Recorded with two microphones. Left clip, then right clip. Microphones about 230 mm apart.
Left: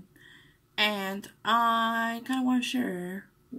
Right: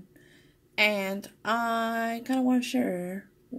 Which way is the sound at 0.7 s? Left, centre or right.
Left.